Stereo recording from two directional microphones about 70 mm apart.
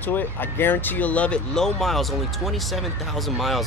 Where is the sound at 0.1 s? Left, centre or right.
Left; by 2.0 s centre.